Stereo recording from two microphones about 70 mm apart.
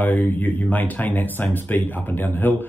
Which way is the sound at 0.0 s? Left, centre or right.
Left.